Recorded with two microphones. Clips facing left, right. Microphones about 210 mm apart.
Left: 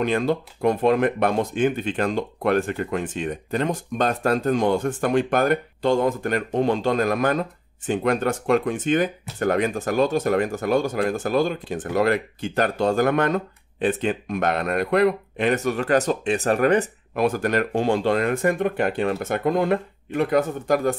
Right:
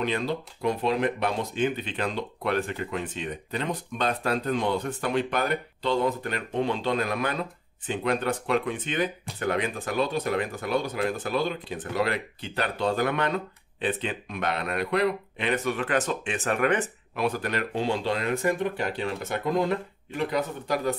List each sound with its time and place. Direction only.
0.0 s speech: 50° left (ahead or behind)